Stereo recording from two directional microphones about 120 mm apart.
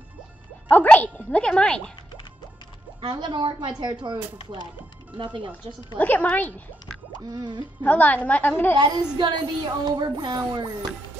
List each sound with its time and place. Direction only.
0.7 s music: 15° left (ahead or behind)
3.0 s a woman's voice: 40° right (ahead or behind)
5.9 s a woman's voice: 15° left (ahead or behind)
7.2 s a woman's voice: 35° right (ahead or behind)
7.8 s a woman's voice: 10° left (ahead or behind)
8.7 s a woman's voice: 40° right (ahead or behind)